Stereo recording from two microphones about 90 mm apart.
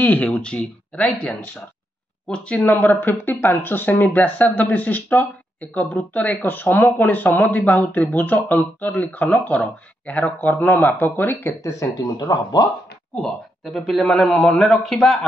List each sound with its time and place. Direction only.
0.0 s speech: 15° left (ahead or behind)
11.6 s speech: 35° left (ahead or behind)
13.7 s a man's voice: centre (ahead or behind)